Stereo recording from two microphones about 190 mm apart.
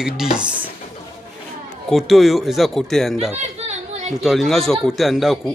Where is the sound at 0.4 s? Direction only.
5° right (ahead or behind).